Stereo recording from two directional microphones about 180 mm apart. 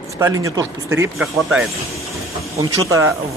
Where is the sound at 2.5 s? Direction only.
15° right (ahead or behind).